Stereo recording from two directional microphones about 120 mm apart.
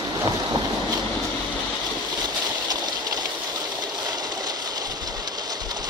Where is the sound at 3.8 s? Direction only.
35° right (ahead or behind).